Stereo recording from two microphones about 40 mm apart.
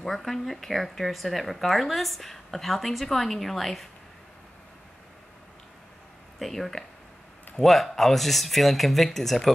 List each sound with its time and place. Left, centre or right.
0.0 s speech: centre
6.4 s speech: centre